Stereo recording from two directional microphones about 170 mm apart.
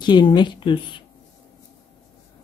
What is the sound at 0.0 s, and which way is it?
Speech, 25° left (ahead or behind).